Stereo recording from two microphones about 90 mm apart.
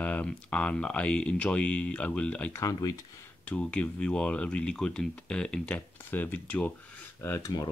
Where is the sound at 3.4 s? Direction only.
15° left (ahead or behind).